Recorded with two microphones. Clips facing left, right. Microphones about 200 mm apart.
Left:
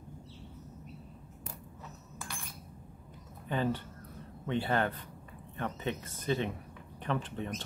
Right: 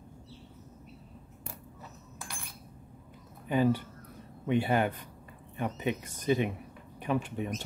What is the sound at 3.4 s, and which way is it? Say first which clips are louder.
Speech: right 6 dB; 10° right (ahead or behind).